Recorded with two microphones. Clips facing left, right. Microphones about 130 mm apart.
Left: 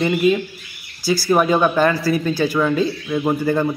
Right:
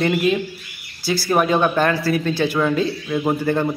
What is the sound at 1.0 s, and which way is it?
Speech, 55° right (ahead or behind).